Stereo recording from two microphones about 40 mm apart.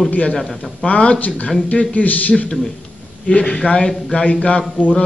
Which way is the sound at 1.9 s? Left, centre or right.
Left.